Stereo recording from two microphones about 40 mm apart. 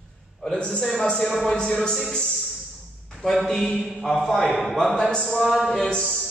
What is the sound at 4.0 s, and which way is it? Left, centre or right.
A man's voice, centre.